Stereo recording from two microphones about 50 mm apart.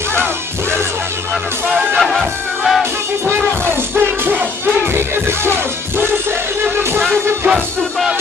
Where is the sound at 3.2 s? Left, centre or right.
Right.